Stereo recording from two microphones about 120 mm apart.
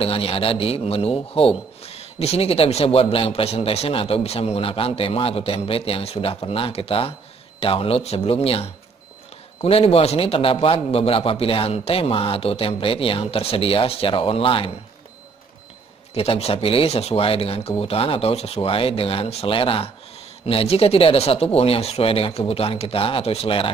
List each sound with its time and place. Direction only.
0.0 s speech: 55° left (ahead or behind)
16.2 s speech: 55° left (ahead or behind)